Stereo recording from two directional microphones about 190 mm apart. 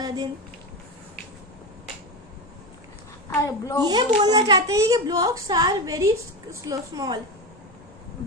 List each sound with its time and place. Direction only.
0.0 s speech: 20° right (ahead or behind)
3.3 s a child's voice: 15° left (ahead or behind)
3.8 s a woman's voice: 20° right (ahead or behind)